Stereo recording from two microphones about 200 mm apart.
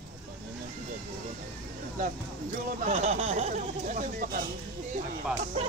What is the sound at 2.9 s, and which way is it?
Speech, 35° right (ahead or behind).